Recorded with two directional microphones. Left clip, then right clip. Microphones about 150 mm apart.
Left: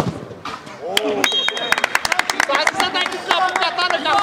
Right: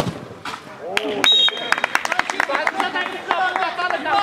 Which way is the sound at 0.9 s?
25° left (ahead or behind).